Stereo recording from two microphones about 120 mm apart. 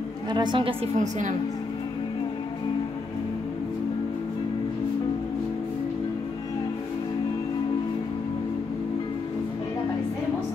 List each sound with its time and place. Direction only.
0.3 s a woman's voice: 40° right (ahead or behind)
0.9 s a woman's voice: 90° right